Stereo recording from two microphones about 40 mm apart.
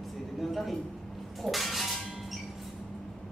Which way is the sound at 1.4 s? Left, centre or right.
Centre.